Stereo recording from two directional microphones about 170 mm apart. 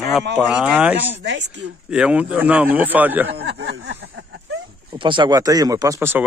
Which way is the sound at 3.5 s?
90° right.